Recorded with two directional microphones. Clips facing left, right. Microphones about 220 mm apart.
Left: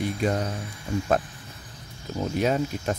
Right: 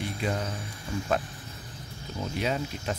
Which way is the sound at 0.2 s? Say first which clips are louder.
Left 5 dB; 45° left (ahead or behind).